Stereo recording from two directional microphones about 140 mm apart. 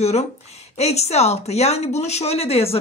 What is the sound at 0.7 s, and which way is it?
A woman's voice, 50° left (ahead or behind).